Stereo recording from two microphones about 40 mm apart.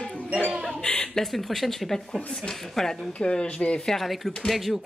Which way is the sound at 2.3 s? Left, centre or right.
Centre.